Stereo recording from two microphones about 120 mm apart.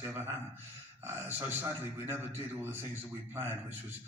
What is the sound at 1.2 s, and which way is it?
A man's voice, 20° right (ahead or behind).